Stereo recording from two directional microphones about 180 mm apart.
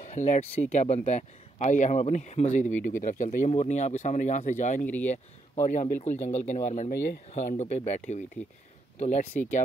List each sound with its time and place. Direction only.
0.0 s speech: 40° left (ahead or behind)
4.8 s speech: 10° left (ahead or behind)
5.1 s speech: 40° left (ahead or behind)